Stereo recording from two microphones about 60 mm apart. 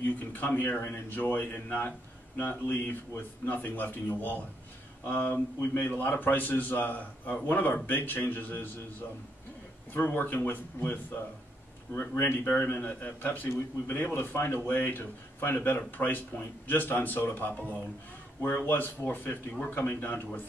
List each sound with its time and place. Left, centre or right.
0.0 s a man's voice: left
9.9 s a man's voice: left
18.7 s a man's voice: left